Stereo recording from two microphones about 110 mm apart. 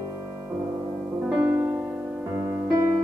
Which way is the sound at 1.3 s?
15° right (ahead or behind).